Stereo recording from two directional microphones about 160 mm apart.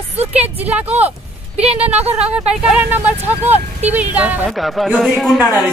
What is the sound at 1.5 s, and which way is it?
Speech, 40° right (ahead or behind).